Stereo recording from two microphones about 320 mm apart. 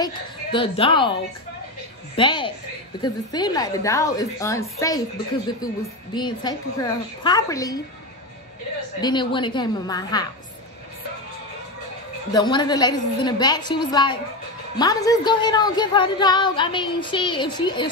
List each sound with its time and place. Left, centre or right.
0.0 s a woman's voice: centre
2.1 s a woman's voice: centre
6.1 s a woman's voice: centre
9.0 s a woman's voice: centre
12.3 s a woman's voice: centre